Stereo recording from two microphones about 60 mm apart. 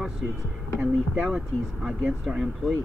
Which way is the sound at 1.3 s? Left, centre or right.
Centre.